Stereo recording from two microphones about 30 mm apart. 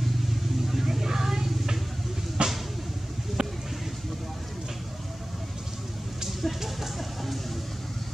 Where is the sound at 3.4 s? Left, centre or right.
Right.